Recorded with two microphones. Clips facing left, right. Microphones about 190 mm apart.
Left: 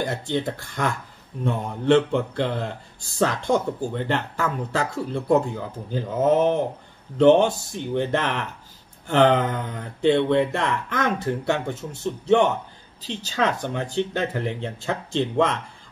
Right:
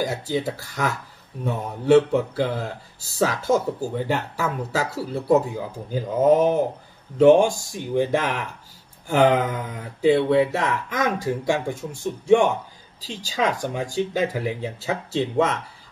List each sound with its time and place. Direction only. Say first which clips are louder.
0.0 s a man's voice: right 1 dB; 5° right (ahead or behind)